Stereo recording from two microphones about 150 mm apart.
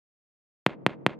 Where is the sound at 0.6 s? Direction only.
Centre (ahead or behind).